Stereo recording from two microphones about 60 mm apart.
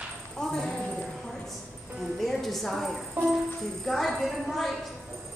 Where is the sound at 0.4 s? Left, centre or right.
Centre.